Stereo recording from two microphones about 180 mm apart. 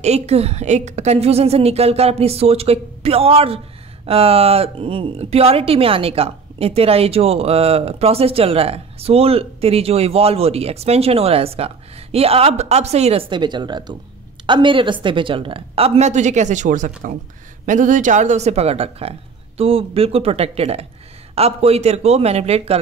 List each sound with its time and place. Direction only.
0.0 s a woman's voice: 35° right (ahead or behind)